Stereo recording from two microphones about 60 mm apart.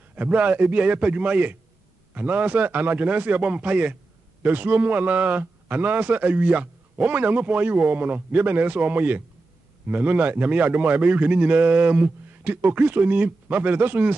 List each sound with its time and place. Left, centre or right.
0.3 s a man's voice: right